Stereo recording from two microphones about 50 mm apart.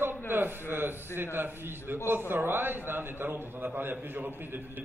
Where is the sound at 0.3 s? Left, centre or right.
Right.